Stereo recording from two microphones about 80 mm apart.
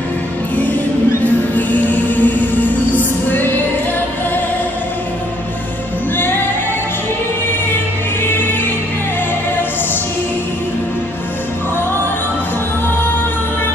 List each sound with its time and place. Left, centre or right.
1.2 s music: left